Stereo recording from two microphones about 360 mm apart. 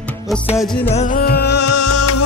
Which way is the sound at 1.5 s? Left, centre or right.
Left.